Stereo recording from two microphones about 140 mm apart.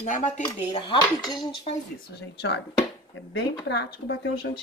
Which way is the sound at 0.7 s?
35° left (ahead or behind).